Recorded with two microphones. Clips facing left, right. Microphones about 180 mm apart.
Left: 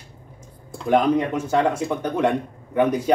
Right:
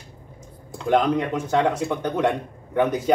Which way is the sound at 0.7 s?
5° left (ahead or behind).